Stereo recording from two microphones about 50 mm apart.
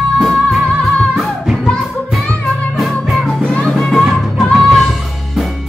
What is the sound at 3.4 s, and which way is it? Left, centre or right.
Music, left.